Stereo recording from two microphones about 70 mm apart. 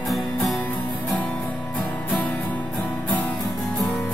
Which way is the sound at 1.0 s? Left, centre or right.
Centre.